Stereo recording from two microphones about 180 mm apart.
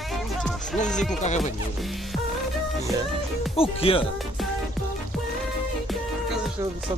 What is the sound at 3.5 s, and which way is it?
Speech, 30° left (ahead or behind).